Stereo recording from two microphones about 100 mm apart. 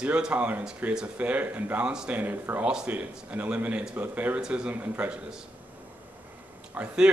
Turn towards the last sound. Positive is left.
turn(degrees=-10)  # may be behind; listen again after turning